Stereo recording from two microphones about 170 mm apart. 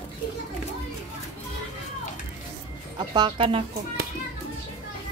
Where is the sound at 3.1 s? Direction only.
30° right (ahead or behind).